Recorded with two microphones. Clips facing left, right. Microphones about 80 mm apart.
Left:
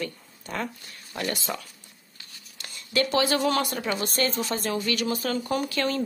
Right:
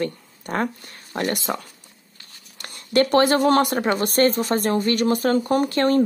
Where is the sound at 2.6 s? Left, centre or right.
Right.